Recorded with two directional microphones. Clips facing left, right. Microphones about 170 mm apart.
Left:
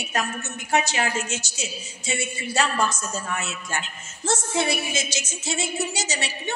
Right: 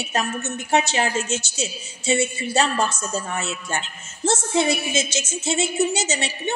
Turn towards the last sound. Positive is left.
turn(degrees=-25)  # may be behind; listen again after turning